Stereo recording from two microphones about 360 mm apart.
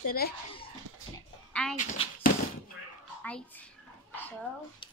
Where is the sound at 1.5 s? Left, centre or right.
Centre.